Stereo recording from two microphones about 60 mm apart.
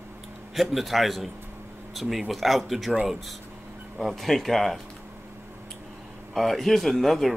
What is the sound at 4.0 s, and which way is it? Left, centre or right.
Speech, centre.